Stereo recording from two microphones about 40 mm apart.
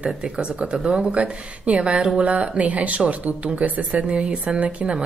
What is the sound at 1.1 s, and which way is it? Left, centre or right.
Speech, right.